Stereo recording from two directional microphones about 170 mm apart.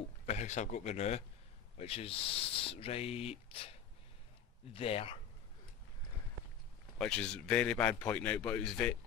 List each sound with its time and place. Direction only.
0.3 s speech: 45° left (ahead or behind)
4.7 s speech: 35° left (ahead or behind)
7.0 s speech: 5° left (ahead or behind)